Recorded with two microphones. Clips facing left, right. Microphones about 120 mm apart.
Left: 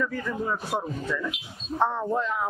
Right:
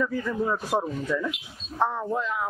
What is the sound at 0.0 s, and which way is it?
Speech, 10° right (ahead or behind).